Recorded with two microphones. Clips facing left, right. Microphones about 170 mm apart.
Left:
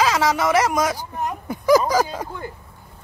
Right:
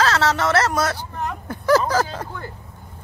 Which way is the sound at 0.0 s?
10° left (ahead or behind).